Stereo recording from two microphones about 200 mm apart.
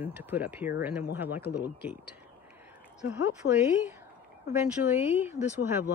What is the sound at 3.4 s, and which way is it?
Speech, 90° left.